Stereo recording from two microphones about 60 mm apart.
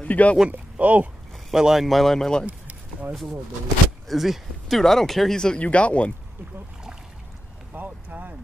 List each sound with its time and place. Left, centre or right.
0.0 s speech: left
0.5 s speech: right
1.5 s speech: centre
4.1 s speech: centre; by 6.1 s left
7.7 s boat: right